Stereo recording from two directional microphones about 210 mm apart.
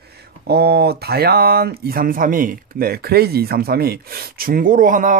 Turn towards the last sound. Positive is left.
turn(degrees=-40)  # may be behind; listen again after turning